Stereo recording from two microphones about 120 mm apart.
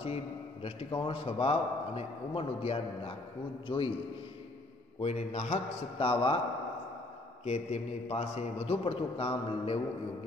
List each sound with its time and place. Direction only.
0.0 s a man's voice: 55° left (ahead or behind)
5.0 s a man's voice: 65° left (ahead or behind); by 6.4 s 50° left (ahead or behind)
7.4 s a man's voice: 60° left (ahead or behind)